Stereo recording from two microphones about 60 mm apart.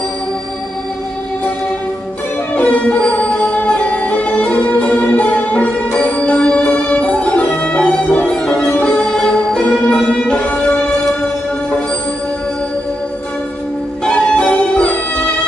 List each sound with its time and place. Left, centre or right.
2.5 s music: left
9.0 s music: centre
14.3 s music: left